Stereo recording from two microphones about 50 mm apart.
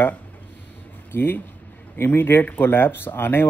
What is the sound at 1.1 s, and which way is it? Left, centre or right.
Speech, left.